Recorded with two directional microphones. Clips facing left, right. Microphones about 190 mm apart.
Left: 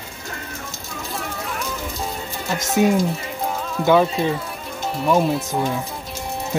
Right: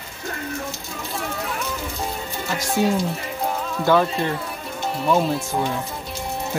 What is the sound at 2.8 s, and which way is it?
Speech, 15° left (ahead or behind).